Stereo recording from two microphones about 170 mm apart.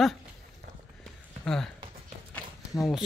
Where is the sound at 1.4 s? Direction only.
5° left (ahead or behind).